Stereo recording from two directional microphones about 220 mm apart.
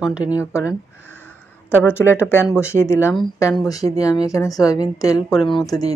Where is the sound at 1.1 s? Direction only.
10° left (ahead or behind).